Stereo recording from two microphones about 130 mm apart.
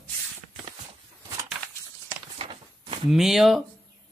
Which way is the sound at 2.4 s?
45° right (ahead or behind).